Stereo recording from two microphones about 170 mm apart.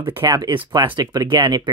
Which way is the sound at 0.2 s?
25° right (ahead or behind).